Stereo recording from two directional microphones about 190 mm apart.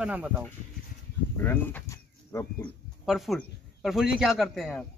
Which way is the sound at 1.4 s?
10° left (ahead or behind).